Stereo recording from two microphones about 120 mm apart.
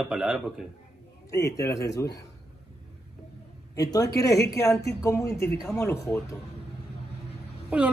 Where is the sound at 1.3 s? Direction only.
25° left (ahead or behind).